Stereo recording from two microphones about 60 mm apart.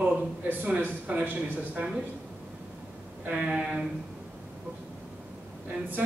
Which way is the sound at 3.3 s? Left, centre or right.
Centre.